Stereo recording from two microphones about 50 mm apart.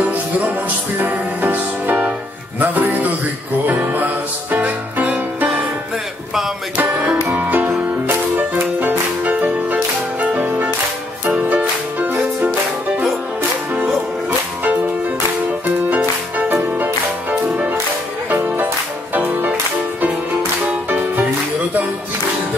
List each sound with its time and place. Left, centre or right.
0.1 s music: right
6.8 s music: right
9.2 s music: right
16.7 s music: right